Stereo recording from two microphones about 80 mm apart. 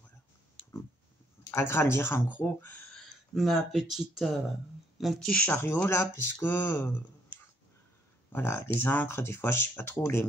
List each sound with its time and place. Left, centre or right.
1.5 s speech: left
3.3 s speech: centre
5.3 s speech: left
7.3 s a sound: right
8.3 s speech: left